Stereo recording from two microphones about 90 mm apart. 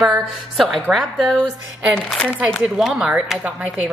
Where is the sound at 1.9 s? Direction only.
15° left (ahead or behind).